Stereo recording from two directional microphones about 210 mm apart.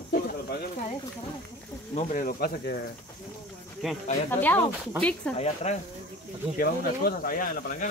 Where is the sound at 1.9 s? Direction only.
35° left (ahead or behind).